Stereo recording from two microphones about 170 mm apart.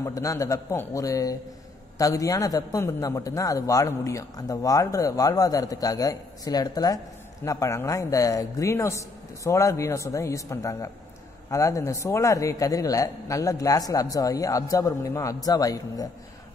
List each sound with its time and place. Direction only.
0.0 s a man's voice: 20° left (ahead or behind)